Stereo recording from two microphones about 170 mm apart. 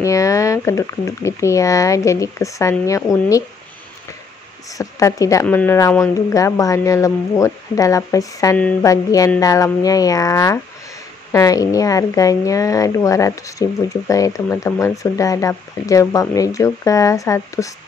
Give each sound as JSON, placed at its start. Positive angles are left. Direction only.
{"t": 0.0, "sound": "speech", "side_deg": 20}
{"t": 4.7, "sound": "a woman's voice", "side_deg": 20}